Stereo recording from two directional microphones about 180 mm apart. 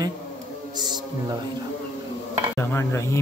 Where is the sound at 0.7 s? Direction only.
25° right (ahead or behind).